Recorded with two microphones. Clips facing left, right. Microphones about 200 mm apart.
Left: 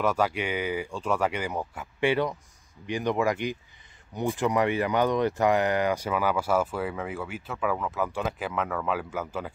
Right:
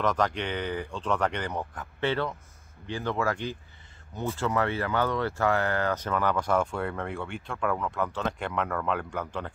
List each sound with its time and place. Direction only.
0.0 s speech: 10° left (ahead or behind)